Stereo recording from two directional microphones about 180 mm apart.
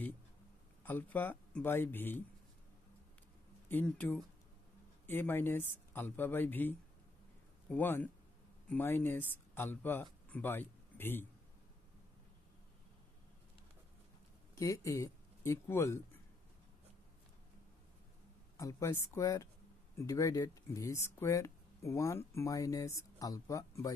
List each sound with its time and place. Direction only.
0.8 s speech: 10° left (ahead or behind)
3.6 s speech: 10° left (ahead or behind)
7.7 s speech: 10° left (ahead or behind)
14.5 s speech: 20° left (ahead or behind)
18.6 s speech: 15° left (ahead or behind)